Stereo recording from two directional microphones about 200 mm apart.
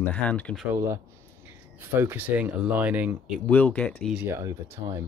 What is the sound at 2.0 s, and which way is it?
Speech, 10° right (ahead or behind).